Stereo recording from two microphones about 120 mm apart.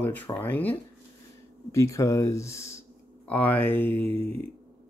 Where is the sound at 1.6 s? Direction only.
25° left (ahead or behind).